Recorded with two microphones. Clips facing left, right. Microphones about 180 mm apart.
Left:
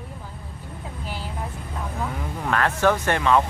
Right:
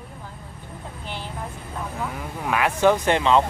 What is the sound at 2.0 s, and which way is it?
Speech, 5° right (ahead or behind).